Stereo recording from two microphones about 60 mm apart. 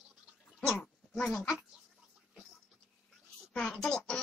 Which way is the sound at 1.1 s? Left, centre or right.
Centre.